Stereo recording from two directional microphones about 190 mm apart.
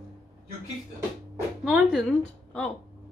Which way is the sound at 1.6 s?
5° right (ahead or behind).